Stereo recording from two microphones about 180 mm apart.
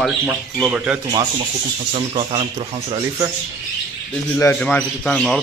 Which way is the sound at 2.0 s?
30° right (ahead or behind).